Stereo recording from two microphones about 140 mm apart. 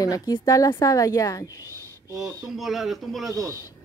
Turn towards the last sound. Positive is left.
turn(degrees=0)  # may be behind; listen again after turning